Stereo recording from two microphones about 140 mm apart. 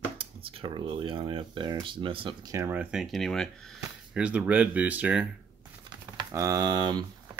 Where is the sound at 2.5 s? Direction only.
20° right (ahead or behind).